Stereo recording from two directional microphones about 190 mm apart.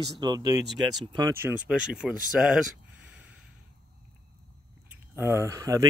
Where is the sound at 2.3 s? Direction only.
5° right (ahead or behind).